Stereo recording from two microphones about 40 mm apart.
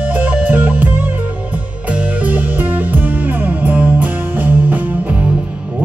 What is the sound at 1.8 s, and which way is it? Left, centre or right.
Music, right.